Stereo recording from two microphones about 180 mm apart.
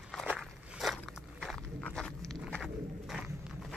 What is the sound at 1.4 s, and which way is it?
Walk, 5° left (ahead or behind).